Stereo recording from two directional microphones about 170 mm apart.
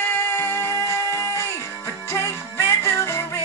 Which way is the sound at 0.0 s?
15° left (ahead or behind).